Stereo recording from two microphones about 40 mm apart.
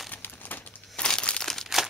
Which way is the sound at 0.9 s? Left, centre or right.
Left.